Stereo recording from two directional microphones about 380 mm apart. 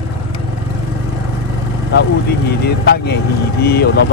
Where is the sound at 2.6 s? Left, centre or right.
Left.